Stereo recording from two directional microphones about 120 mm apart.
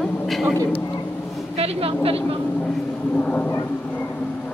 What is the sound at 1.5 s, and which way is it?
Speech, 55° right (ahead or behind).